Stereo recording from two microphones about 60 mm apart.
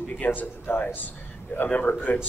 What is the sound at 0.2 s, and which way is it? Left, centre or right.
Speech, left.